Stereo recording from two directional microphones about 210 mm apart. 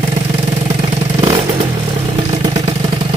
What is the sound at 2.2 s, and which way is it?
Vehicle, 25° right (ahead or behind).